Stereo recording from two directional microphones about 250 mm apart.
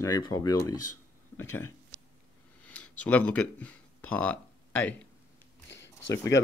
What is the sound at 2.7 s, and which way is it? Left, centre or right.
Speech, centre.